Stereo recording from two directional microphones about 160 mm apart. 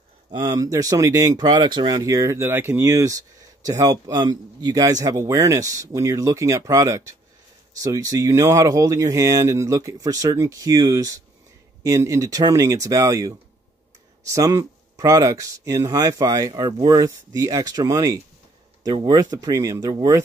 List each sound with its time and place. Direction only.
0.3 s speech: 25° right (ahead or behind)